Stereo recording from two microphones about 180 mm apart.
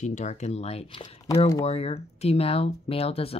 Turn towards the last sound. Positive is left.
turn(degrees=35)  # may be behind; listen again after turning